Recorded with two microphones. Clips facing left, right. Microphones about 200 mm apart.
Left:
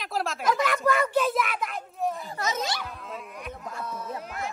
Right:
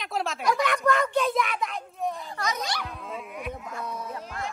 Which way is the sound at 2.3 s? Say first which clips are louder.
Left 1 dB; 25° left (ahead or behind).